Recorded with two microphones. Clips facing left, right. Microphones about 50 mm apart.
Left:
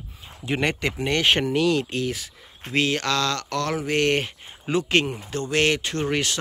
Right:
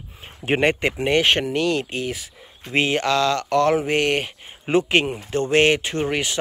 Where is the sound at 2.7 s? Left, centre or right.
Right.